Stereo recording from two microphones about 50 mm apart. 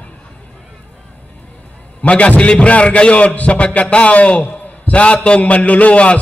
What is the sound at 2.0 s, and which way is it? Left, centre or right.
A man's voice, left.